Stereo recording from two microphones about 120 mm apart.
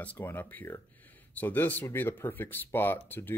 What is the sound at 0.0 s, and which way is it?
Speech, 15° left (ahead or behind).